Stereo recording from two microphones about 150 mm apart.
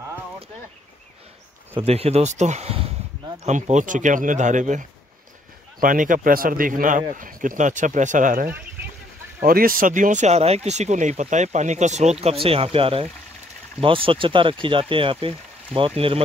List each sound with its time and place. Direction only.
1.8 s speech: 45° right (ahead or behind); by 8.5 s 60° right (ahead or behind)
9.5 s speech: 70° right (ahead or behind); by 16.2 s 35° right (ahead or behind)